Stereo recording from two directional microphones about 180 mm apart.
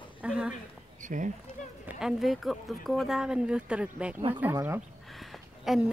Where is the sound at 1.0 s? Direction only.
45° right (ahead or behind).